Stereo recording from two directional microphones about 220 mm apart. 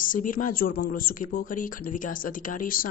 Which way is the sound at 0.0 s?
40° left (ahead or behind).